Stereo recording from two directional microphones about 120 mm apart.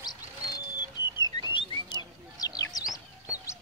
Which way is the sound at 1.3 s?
40° left (ahead or behind).